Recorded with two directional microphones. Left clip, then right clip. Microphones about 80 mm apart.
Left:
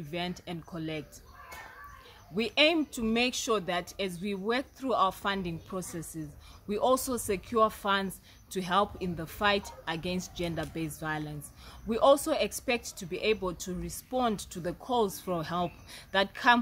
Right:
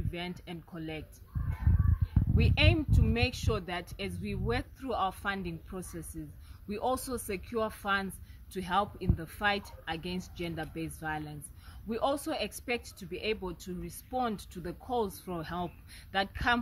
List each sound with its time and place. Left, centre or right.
0.1 s a woman's voice: left
2.3 s a woman's voice: left